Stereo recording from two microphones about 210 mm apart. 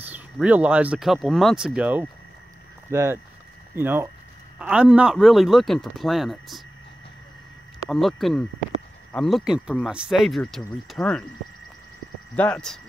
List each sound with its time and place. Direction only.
0.0 s speech: 5° right (ahead or behind)
7.9 s speech: centre (ahead or behind)
12.4 s speech: 5° left (ahead or behind)